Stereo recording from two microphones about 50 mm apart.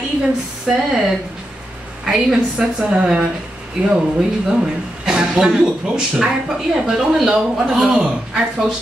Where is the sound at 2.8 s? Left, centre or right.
Right.